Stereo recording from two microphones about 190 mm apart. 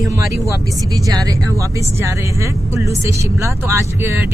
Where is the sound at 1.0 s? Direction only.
20° right (ahead or behind).